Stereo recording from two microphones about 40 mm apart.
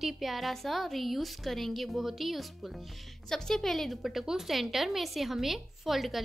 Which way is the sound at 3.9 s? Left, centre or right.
Centre.